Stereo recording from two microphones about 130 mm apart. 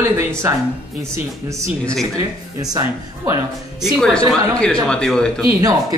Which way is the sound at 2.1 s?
30° right (ahead or behind).